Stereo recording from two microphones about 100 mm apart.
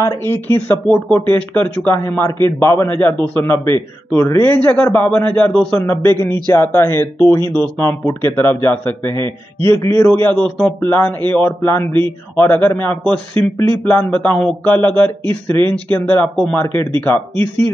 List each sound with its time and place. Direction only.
0.0 s a man's voice: 25° left (ahead or behind)
4.4 s a man's voice: 20° left (ahead or behind)
5.8 s a man's voice: 25° left (ahead or behind)